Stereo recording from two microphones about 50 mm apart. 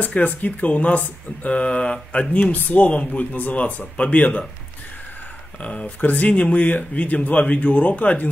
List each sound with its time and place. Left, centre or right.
0.0 s speech: left
2.5 s speech: left
5.6 s speech: left